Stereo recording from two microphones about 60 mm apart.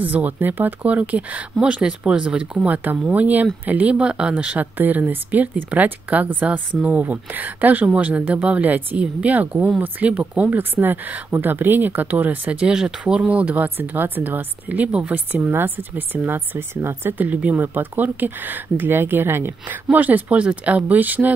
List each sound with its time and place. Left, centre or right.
0.0 s speech: right
15.5 s speech: right
17.2 s speech: right
19.9 s speech: right